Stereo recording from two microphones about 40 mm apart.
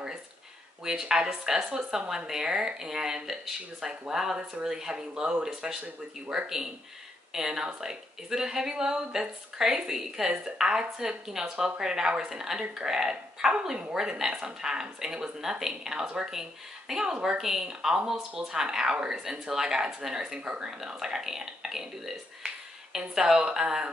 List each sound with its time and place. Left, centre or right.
0.8 s a woman's voice: centre
7.3 s a woman's voice: centre
13.9 s a woman's voice: centre
20.3 s speech: right
20.8 s a woman's voice: centre